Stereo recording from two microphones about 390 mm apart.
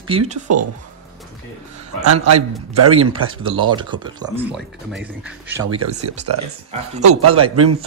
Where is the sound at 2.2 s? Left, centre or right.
Right.